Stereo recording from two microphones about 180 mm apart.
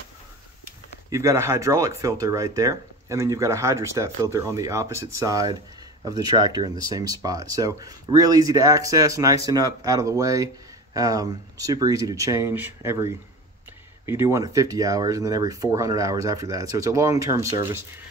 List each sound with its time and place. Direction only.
1.1 s speech: 15° right (ahead or behind)
14.0 s speech: 15° right (ahead or behind)